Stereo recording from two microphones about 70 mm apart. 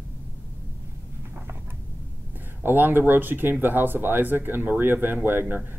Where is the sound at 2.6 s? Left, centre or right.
Right.